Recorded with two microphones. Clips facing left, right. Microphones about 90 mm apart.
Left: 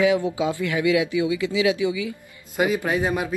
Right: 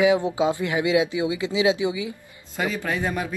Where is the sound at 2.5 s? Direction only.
15° left (ahead or behind).